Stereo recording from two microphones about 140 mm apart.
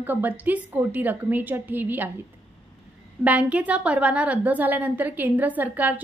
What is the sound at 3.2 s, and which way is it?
A woman's voice, 10° right (ahead or behind).